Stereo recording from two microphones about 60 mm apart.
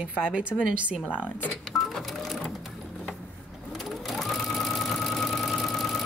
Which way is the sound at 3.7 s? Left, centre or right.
Centre.